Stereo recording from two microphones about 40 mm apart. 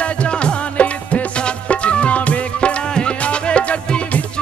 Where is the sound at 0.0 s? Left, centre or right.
Left.